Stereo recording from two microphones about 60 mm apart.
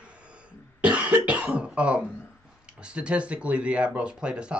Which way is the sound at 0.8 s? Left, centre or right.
Right.